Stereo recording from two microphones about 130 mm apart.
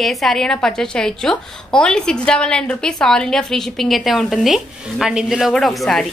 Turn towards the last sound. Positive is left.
turn(degrees=0)  # may be behind; listen again after turning